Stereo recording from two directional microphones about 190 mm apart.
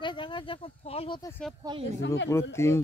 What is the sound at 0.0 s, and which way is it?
Speech, 25° left (ahead or behind).